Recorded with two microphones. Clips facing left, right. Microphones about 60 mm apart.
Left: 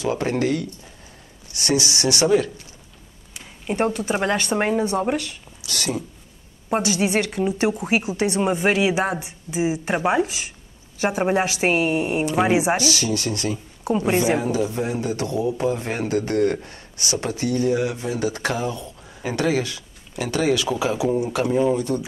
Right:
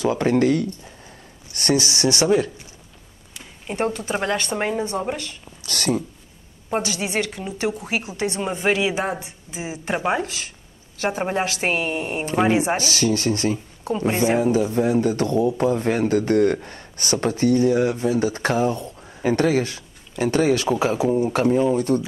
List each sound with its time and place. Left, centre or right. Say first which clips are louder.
0.2 s speech: right 4 dB; right
3.7 s speech: left 2 dB; centre
5.6 s speech: right 4 dB; right
6.7 s speech: left 3 dB; centre
12.7 s speech: right 1 dB; right
13.8 s speech: left 1 dB; centre
14.5 s speech: right 4 dB; right